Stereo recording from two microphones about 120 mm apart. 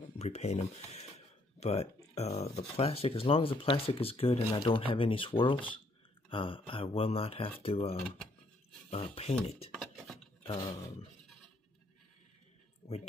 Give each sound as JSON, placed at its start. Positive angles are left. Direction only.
{"t": 0.2, "sound": "speech", "side_deg": 65}
{"t": 9.7, "sound": "dishes", "side_deg": 0}
{"t": 10.4, "sound": "speech", "side_deg": 50}